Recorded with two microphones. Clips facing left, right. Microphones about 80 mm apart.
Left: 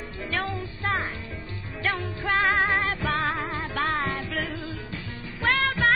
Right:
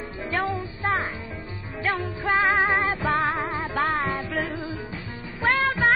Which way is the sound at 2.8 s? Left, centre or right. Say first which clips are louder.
Right 3 dB; centre.